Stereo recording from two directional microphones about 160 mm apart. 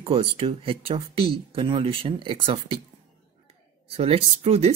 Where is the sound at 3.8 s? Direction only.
35° right (ahead or behind).